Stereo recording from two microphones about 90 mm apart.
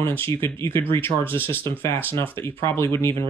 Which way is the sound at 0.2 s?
25° left (ahead or behind).